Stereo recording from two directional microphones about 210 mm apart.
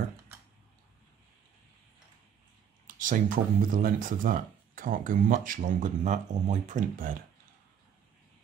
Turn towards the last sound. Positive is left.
turn(degrees=-40)  # may be behind; listen again after turning